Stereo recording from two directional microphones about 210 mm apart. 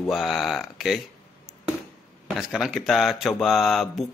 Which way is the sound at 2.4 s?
Centre (ahead or behind).